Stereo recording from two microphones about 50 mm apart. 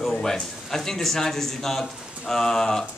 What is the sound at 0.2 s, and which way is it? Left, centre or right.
A man's voice, centre.